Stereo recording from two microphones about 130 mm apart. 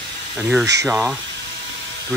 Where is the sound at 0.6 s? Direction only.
25° right (ahead or behind).